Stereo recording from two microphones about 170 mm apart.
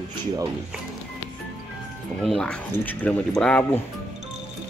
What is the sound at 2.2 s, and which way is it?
Speech, centre (ahead or behind).